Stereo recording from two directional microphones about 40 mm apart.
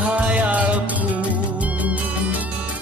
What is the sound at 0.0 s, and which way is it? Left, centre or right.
Music, right.